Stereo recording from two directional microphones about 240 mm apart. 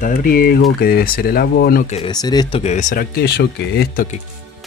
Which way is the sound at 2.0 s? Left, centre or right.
Centre.